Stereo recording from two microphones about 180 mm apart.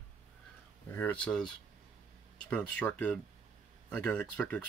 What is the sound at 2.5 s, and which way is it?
Speech, 10° left (ahead or behind).